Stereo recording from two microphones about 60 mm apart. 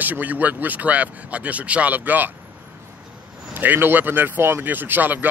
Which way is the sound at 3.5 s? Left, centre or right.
Right.